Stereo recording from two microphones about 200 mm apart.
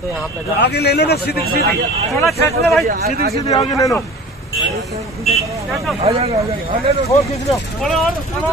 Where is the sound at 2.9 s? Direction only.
50° right (ahead or behind).